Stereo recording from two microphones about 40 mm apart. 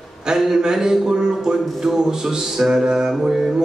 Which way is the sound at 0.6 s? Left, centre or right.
Centre.